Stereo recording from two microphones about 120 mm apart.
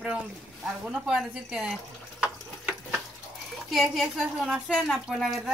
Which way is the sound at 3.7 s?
Centre (ahead or behind).